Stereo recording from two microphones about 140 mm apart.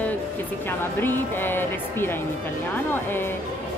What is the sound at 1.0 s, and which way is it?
Speech, 15° left (ahead or behind).